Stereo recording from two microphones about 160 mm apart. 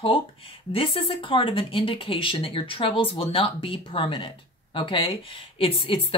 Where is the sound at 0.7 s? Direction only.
35° left (ahead or behind).